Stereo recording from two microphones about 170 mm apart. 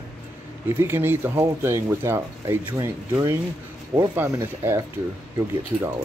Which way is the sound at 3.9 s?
15° right (ahead or behind).